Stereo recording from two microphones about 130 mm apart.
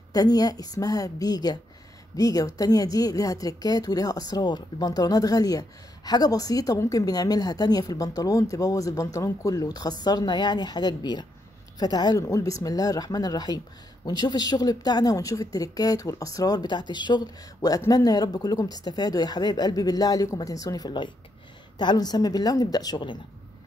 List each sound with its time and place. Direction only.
0.1 s speech: 30° left (ahead or behind)